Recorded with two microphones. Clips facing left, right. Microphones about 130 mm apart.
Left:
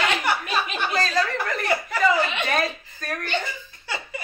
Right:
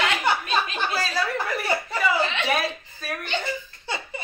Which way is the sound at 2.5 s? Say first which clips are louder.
Even; 5° right (ahead or behind).